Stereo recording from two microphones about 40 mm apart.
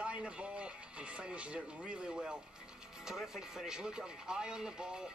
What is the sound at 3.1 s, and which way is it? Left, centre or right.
Speech, centre.